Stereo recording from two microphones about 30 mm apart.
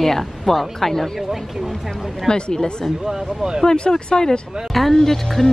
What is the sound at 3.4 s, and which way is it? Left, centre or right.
Speech, right.